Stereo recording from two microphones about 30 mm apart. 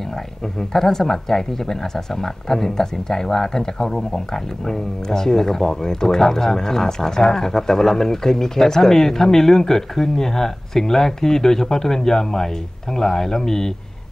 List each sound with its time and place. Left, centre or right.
0.6 s speech: centre